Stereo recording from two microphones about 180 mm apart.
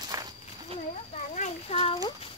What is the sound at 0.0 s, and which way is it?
Walk, 20° right (ahead or behind).